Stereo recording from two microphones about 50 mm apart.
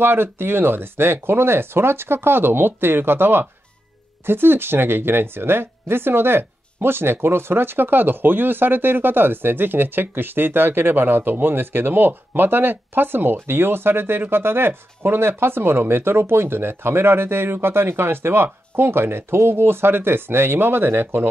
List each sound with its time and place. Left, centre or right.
0.0 s speech: right